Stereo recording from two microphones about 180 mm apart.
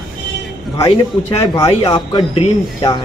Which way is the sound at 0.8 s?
30° left (ahead or behind).